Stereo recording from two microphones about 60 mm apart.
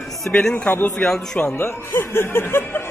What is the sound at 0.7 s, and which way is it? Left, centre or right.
Speech, left.